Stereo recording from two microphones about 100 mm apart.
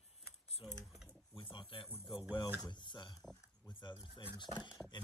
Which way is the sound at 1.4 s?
60° left (ahead or behind).